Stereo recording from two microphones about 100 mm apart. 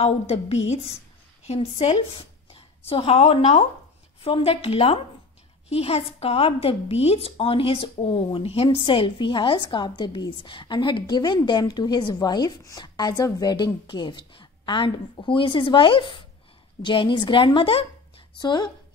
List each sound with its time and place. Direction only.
0.0 s a woman's voice: 90° left
2.9 s a woman's voice: 75° left (ahead or behind)
4.2 s speech: 75° left (ahead or behind)
5.7 s speech: 90° left; by 8.6 s 75° left (ahead or behind)
8.8 s a woman's voice: 55° left (ahead or behind)
18.4 s a woman's voice: 45° left (ahead or behind)